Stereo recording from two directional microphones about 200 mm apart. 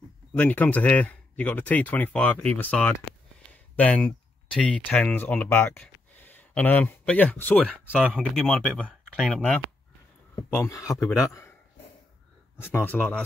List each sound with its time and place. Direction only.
0.4 s speech: 10° left (ahead or behind)
10.5 s speech: 15° left (ahead or behind)
12.5 s speech: 10° left (ahead or behind)